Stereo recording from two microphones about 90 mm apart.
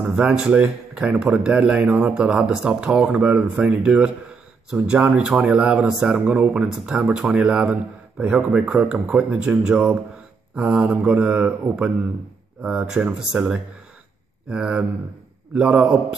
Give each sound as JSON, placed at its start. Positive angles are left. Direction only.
{"t": 0.0, "sound": "speech", "side_deg": -5}
{"t": 5.1, "sound": "speech", "side_deg": -5}
{"t": 14.5, "sound": "speech", "side_deg": -10}